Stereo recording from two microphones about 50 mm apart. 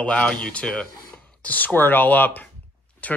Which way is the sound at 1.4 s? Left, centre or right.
Left.